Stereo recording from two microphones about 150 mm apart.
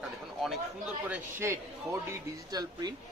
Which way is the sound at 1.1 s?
15° right (ahead or behind).